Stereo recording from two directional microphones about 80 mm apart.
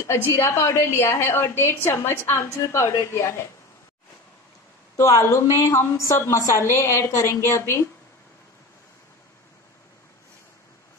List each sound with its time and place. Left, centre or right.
0.0 s a woman's voice: left
4.9 s a woman's voice: left